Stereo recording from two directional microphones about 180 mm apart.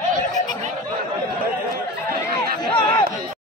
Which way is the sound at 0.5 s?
40° right (ahead or behind).